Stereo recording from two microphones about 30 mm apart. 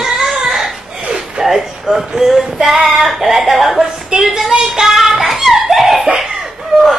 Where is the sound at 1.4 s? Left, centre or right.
Centre.